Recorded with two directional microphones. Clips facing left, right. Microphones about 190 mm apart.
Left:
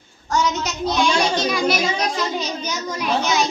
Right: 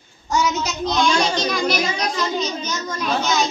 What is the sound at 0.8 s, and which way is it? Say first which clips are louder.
A child's voice: even; 5° left (ahead or behind).